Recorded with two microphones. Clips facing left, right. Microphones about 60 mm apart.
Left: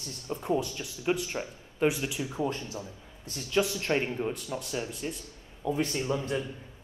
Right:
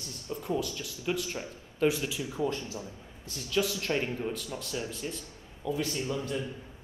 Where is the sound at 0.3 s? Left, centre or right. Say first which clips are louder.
Left 3 dB; left.